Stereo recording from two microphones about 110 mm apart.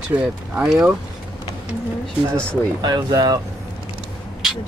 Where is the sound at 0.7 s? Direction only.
10° right (ahead or behind).